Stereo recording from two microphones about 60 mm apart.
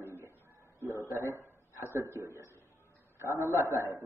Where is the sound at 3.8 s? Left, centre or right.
Right.